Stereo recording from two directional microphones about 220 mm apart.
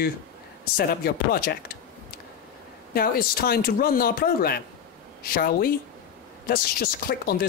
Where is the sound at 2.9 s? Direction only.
40° left (ahead or behind).